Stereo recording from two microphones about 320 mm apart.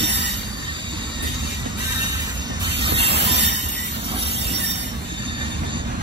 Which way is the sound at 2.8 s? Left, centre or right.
Centre.